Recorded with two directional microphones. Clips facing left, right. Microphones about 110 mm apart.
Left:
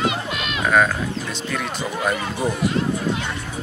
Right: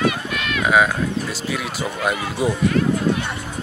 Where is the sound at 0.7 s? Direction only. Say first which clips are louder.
Right 1 dB; 5° right (ahead or behind).